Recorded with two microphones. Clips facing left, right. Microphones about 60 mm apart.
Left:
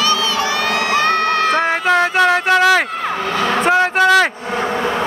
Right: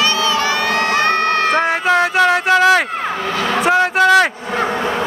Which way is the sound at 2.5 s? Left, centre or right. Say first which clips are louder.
Right 1 dB; centre.